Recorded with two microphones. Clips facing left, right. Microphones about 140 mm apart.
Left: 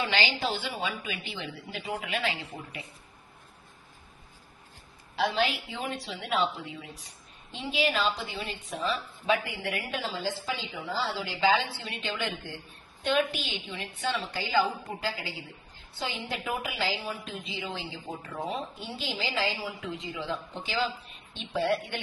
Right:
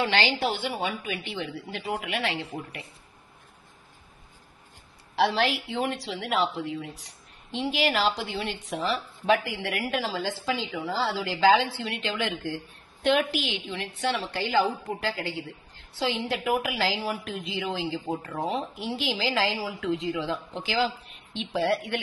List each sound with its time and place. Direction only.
0.1 s a woman's voice: 65° right (ahead or behind)
5.1 s a woman's voice: 75° right (ahead or behind)
7.0 s a woman's voice: 90° right
15.7 s a woman's voice: 90° right
18.0 s speech: 50° right (ahead or behind)
18.6 s a woman's voice: 90° right